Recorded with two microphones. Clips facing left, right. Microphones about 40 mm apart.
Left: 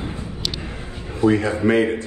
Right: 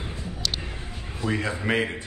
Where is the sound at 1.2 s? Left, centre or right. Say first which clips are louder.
Left 11 dB; left.